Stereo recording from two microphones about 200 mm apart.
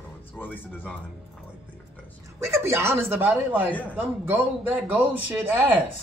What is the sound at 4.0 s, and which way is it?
A man's voice, 10° right (ahead or behind).